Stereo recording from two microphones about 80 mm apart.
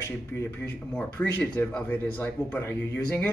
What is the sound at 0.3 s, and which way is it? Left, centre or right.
Speech, left.